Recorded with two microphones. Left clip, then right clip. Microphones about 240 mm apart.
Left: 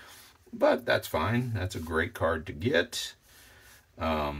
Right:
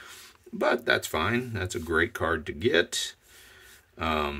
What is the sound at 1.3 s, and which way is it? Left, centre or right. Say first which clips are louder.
Speech: right 4 dB; right.